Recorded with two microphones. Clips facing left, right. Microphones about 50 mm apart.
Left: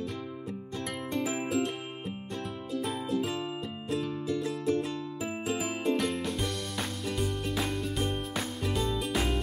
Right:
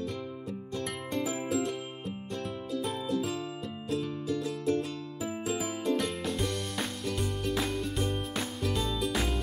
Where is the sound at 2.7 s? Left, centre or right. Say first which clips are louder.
Left 1 dB; centre.